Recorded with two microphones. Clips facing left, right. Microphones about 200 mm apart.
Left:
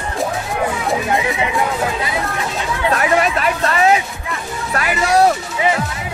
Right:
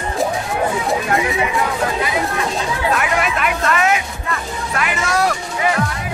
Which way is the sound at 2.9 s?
35° left (ahead or behind).